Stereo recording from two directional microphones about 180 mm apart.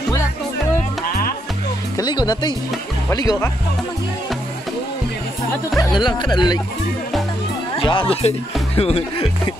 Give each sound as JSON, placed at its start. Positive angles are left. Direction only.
{"t": 1.0, "sound": "music", "side_deg": 50}
{"t": 2.0, "sound": "speech", "side_deg": 25}
{"t": 5.8, "sound": "speech", "side_deg": 25}
{"t": 7.7, "sound": "speech", "side_deg": 25}